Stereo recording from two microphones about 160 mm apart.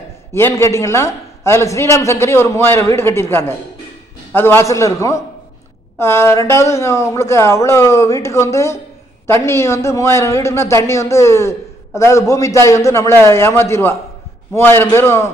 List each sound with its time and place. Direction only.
0.3 s a man's voice: 15° left (ahead or behind)